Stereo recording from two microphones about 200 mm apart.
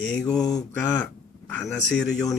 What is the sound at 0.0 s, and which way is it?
Speech, 5° left (ahead or behind).